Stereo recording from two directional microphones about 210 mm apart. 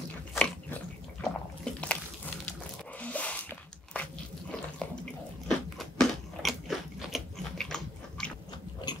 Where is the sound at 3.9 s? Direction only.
5° left (ahead or behind).